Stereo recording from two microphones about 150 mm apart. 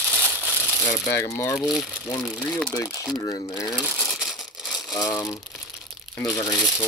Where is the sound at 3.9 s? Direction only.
Centre (ahead or behind).